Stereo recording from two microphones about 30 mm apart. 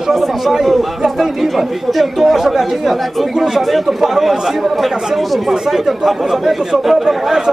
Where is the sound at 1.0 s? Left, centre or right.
Centre.